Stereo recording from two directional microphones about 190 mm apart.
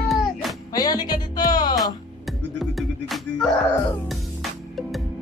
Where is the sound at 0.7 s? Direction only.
20° left (ahead or behind).